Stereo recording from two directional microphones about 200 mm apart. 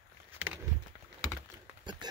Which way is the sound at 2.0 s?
20° right (ahead or behind).